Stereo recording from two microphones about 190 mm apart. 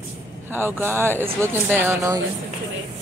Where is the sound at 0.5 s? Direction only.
10° right (ahead or behind).